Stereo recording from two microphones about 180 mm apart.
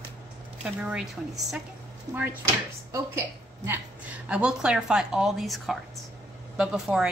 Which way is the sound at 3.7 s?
5° right (ahead or behind).